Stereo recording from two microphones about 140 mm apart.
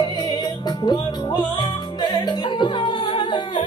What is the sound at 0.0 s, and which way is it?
Music, 30° left (ahead or behind).